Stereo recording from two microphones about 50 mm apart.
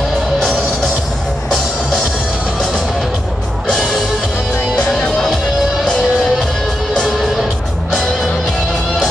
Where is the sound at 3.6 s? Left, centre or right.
Centre.